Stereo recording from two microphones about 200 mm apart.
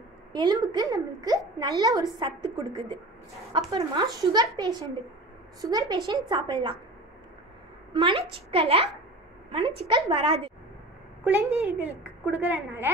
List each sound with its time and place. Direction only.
0.3 s a woman's voice: 20° right (ahead or behind)
7.9 s a woman's voice: 25° right (ahead or behind)
11.2 s a woman's voice: 5° right (ahead or behind)